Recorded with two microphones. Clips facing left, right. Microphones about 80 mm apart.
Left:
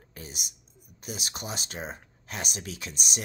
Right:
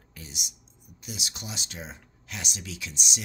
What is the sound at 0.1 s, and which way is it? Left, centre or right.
Speech, left.